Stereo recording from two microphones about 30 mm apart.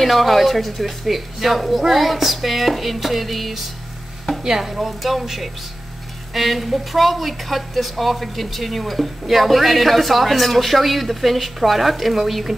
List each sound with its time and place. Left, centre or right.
0.0 s speech: centre
4.4 s speech: centre